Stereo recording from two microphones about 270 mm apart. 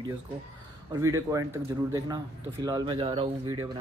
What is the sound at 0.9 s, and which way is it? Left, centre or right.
Speech, centre.